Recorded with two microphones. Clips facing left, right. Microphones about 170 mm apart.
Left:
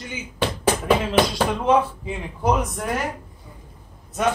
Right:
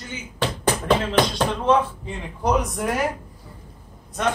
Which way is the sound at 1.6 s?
5° left (ahead or behind).